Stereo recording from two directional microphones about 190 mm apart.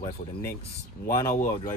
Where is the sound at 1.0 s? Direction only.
15° left (ahead or behind).